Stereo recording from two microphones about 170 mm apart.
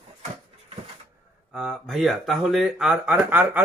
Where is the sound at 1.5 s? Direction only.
Centre (ahead or behind).